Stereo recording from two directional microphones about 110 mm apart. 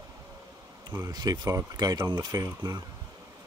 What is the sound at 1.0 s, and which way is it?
Speech, 35° right (ahead or behind).